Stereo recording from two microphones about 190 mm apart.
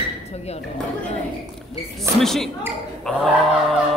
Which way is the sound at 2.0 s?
Centre (ahead or behind).